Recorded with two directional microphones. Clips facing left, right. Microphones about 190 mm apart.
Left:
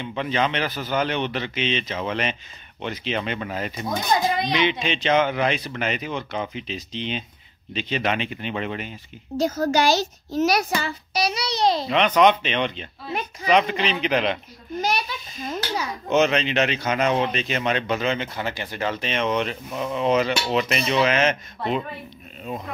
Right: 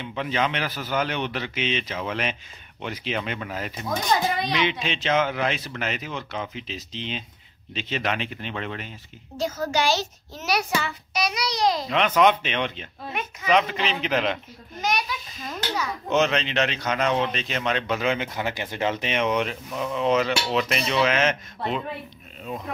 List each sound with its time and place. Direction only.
0.0 s a man's voice: 5° right (ahead or behind)
9.4 s a child's voice: 40° left (ahead or behind)
11.9 s a man's voice: 5° right (ahead or behind)
13.1 s speech: 35° left (ahead or behind)
13.5 s a man's voice: centre (ahead or behind)
14.8 s a sound: 30° left (ahead or behind)
16.1 s a man's voice: 5° left (ahead or behind)